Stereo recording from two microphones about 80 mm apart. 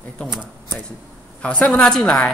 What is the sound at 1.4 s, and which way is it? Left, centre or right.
Speech, centre.